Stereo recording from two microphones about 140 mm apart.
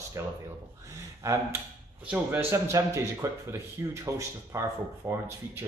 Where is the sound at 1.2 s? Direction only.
20° right (ahead or behind).